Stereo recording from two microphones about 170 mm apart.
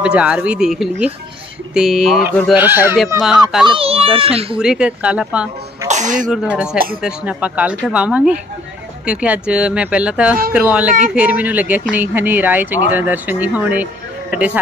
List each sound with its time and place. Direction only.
0.0 s speech: 5° right (ahead or behind)
2.5 s speech: 10° right (ahead or behind)
3.6 s a child's voice: 35° right (ahead or behind)
4.6 s speech: 5° right (ahead or behind)
5.9 s speech: 45° right (ahead or behind)
6.5 s speech: 5° right (ahead or behind)